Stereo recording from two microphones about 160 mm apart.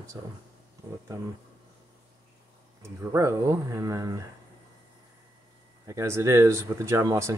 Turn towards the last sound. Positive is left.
turn(degrees=-15)  # may be behind; listen again after turning